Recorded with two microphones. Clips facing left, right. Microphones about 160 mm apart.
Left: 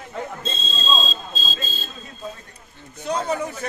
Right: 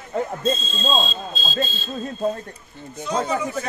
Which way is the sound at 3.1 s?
60° left (ahead or behind).